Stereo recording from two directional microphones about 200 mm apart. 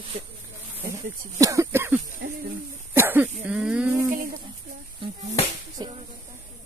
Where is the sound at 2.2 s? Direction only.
55° right (ahead or behind).